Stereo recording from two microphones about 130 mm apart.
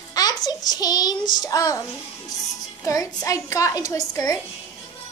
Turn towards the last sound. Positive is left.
turn(degrees=25)  # may be behind; listen again after turning